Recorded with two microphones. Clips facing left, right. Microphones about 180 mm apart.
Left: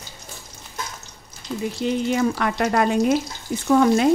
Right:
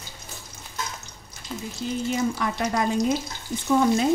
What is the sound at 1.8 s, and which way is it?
Speech, 75° left (ahead or behind).